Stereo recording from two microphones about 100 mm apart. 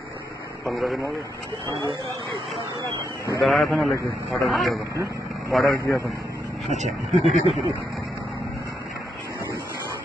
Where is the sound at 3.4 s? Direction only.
Centre (ahead or behind).